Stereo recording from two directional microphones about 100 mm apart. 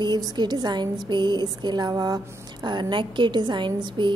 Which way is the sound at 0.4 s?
45° right (ahead or behind).